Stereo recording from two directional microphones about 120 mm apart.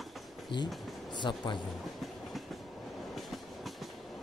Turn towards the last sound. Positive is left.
turn(degrees=0)  # may be behind; listen again after turning